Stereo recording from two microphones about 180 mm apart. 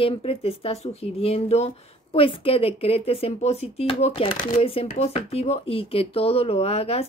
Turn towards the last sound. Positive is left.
turn(degrees=35)  # may be behind; listen again after turning